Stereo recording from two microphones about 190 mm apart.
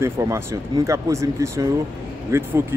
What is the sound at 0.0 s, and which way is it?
Speech, 15° right (ahead or behind).